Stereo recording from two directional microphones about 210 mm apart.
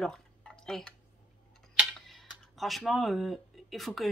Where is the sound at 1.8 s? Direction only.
Centre (ahead or behind).